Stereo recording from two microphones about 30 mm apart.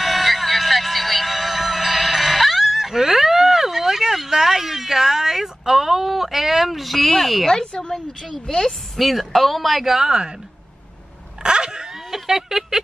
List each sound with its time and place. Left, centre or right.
0.0 s music: centre
7.9 s a woman's voice: centre
8.9 s speech: centre
9.8 s speech: centre
11.4 s a sound: right
12.1 s speech: centre